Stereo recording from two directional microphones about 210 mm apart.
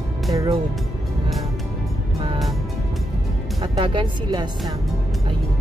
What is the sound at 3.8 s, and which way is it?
Speech, 25° right (ahead or behind).